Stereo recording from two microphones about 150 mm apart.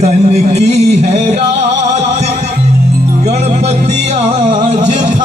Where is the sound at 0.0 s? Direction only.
45° right (ahead or behind).